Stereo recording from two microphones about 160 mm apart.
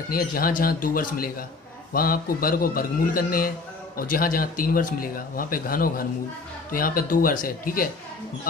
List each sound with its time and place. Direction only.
0.1 s a man's voice: 65° left (ahead or behind)